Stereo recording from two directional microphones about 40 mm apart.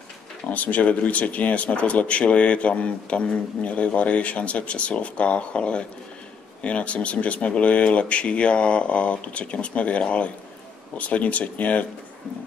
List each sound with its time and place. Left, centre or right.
0.5 s speech: left